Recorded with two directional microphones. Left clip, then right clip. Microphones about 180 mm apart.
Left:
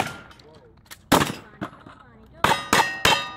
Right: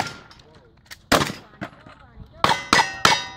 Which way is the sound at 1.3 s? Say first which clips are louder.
Even; 10° right (ahead or behind).